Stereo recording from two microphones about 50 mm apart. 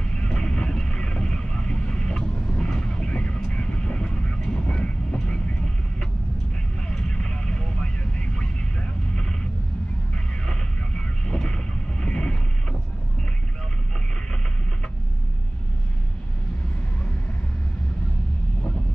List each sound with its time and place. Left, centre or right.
0.0 s vehicle: centre
3.3 s train: left
6.9 s vehicle: centre